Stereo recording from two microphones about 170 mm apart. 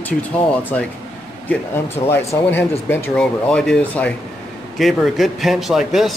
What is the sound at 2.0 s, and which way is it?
Speech, 15° left (ahead or behind).